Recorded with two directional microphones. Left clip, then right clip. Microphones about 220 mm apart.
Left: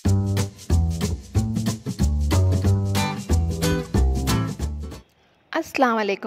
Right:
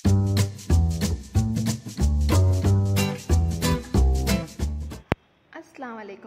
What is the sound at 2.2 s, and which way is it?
Music, centre (ahead or behind).